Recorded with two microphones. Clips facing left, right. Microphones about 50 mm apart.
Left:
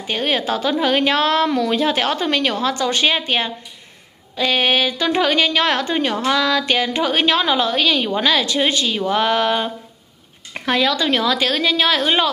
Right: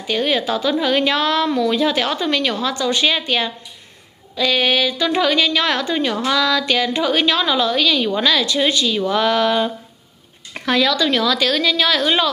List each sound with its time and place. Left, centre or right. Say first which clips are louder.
0.0 s a woman's voice: right 1 dB; left